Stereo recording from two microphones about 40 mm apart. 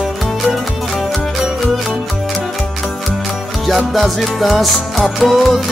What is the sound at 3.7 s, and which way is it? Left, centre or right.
Music, centre.